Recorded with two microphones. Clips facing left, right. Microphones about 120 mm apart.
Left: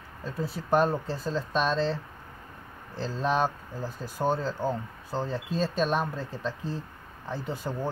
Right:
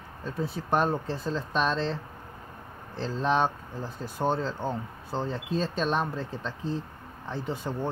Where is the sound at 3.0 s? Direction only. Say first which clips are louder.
Right 1 dB; 5° left (ahead or behind).